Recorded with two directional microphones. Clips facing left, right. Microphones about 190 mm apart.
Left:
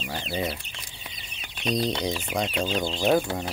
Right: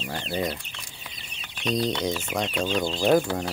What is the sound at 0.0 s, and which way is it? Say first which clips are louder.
Speech: right 1 dB; 10° left (ahead or behind).